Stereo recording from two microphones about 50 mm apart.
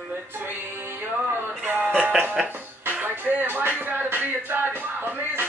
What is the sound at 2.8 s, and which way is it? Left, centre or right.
Music, right.